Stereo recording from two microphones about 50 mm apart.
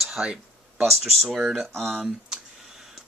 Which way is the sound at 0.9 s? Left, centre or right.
Centre.